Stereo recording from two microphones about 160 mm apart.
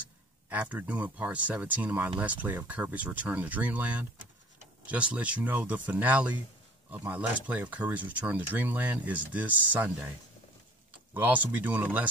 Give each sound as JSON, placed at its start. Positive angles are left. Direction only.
{"t": 0.0, "sound": "speech", "side_deg": -10}
{"t": 11.1, "sound": "speech", "side_deg": -10}